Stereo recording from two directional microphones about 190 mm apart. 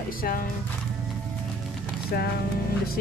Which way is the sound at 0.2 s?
50° left (ahead or behind).